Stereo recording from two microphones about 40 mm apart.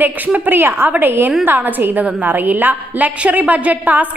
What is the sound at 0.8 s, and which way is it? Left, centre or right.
A woman's voice, right.